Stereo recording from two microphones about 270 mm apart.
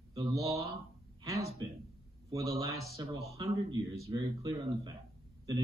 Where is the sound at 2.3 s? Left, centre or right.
Centre.